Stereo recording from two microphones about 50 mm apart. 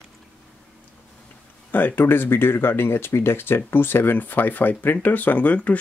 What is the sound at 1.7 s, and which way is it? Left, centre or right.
Speech, left.